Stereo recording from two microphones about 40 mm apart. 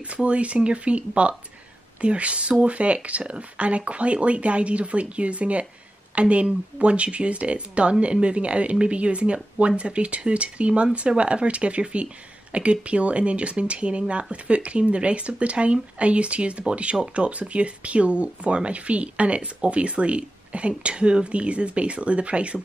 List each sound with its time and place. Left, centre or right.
0.1 s speech: right